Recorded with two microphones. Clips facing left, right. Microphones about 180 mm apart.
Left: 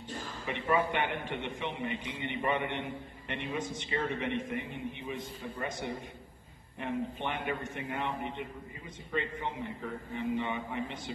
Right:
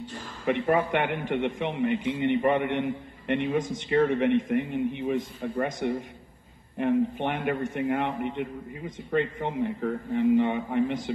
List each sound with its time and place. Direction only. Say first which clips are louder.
0.5 s a man's voice: right 7 dB; 60° right (ahead or behind)